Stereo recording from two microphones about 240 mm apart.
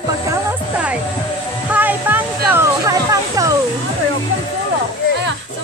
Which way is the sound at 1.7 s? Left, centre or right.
Centre.